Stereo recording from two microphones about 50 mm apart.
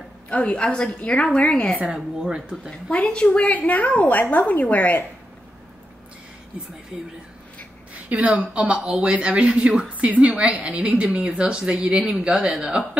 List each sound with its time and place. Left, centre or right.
0.3 s a woman's voice: left
2.2 s speech: centre
2.7 s a woman's voice: left
7.9 s a woman's voice: right; by 12.8 s centre